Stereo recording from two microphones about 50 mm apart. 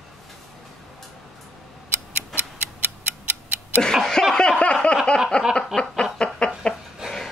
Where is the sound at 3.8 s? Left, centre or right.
Centre.